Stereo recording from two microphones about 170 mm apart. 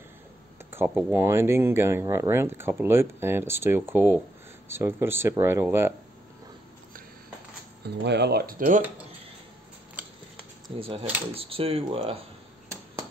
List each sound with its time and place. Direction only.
0.7 s speech: 10° right (ahead or behind)
8.0 s speech: 80° right; by 8.8 s 55° right (ahead or behind)
10.8 s speech: 30° right (ahead or behind)